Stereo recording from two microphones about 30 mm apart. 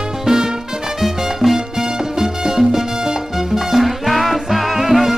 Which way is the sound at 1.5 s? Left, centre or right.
Centre.